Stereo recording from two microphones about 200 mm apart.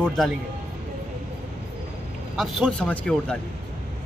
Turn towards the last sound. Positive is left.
turn(degrees=5)  # may be behind; listen again after turning